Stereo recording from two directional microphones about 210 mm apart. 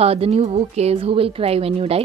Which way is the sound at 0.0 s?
30° right (ahead or behind).